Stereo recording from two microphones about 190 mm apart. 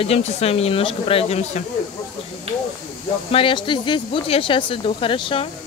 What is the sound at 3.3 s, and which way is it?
Speech, 30° left (ahead or behind).